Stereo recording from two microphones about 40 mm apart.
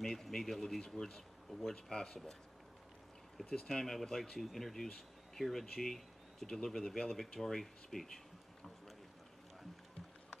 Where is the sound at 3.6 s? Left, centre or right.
Centre.